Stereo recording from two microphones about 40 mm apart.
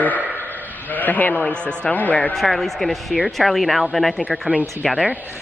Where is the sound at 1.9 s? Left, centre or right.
Left.